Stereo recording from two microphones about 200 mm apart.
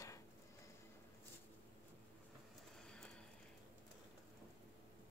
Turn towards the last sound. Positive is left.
turn(degrees=5)  # may be behind; listen again after turning